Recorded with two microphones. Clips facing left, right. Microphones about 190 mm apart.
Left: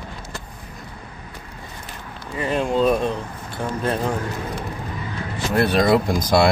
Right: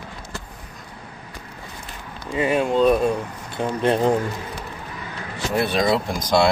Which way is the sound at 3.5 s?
25° right (ahead or behind).